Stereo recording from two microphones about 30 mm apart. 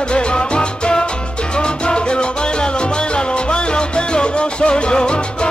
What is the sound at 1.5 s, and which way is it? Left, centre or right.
Music, left.